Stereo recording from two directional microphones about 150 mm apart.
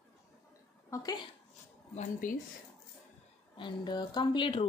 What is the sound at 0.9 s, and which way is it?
Speech, 25° left (ahead or behind).